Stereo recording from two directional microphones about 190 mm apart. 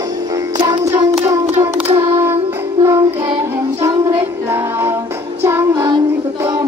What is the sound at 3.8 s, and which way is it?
Music, 10° right (ahead or behind).